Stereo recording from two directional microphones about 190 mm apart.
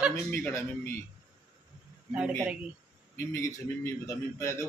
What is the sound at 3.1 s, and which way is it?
Speech, 15° left (ahead or behind).